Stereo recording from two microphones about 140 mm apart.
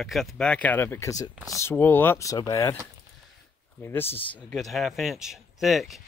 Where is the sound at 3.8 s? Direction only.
15° left (ahead or behind).